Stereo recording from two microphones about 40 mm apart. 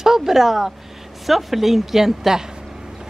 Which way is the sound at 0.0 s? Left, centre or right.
Centre.